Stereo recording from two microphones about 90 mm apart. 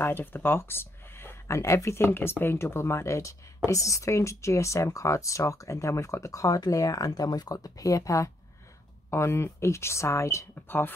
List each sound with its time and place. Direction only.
0.0 s speech: 25° left (ahead or behind)